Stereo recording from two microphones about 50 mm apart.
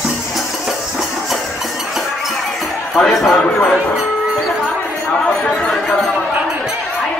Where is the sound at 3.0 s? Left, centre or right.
Left.